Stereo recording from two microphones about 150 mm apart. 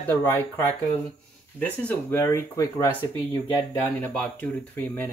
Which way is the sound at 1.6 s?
10° left (ahead or behind).